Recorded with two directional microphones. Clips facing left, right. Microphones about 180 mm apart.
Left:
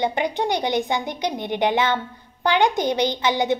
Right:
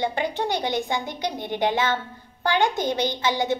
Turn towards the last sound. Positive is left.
turn(degrees=20)  # may be behind; listen again after turning